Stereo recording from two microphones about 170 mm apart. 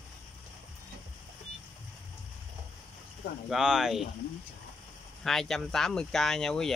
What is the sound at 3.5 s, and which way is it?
Speech, 5° right (ahead or behind).